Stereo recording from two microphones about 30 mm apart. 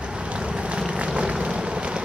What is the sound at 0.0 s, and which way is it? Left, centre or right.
Vehicle, right.